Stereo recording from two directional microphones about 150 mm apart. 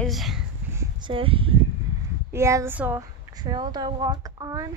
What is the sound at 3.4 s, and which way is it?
Speech, 30° right (ahead or behind).